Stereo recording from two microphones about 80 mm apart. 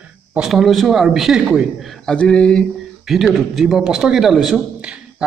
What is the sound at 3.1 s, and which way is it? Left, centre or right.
A man's voice, centre.